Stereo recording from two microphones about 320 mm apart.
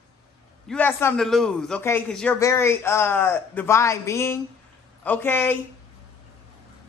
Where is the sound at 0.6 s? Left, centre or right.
Centre.